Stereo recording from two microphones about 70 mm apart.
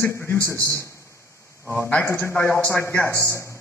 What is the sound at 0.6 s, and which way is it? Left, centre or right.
Speech, right.